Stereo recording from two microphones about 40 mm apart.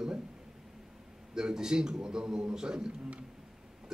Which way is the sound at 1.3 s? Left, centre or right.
Centre.